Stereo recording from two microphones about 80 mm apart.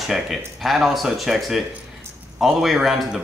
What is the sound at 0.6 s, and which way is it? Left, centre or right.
A man's voice, centre.